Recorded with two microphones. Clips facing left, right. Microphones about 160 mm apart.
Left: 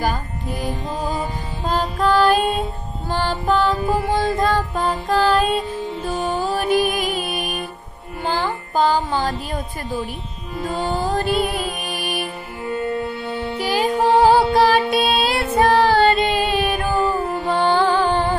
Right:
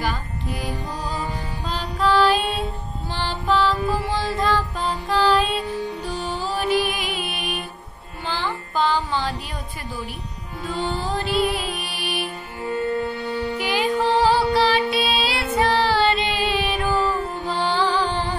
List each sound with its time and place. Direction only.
0.0 s music: 45° left (ahead or behind)
0.8 s music: 20° left (ahead or behind)
1.6 s music: 45° left (ahead or behind)
5.8 s music: 20° left (ahead or behind)
6.0 s music: 50° left (ahead or behind)
10.7 s music: 45° left (ahead or behind)
13.6 s music: 40° left (ahead or behind)